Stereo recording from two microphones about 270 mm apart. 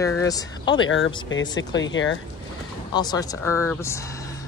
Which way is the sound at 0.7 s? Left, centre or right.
Left.